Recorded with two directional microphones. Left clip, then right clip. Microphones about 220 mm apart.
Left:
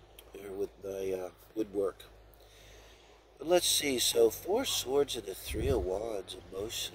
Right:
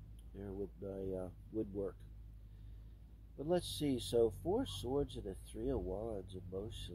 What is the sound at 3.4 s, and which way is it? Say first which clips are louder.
Speech: left 10 dB; 20° left (ahead or behind).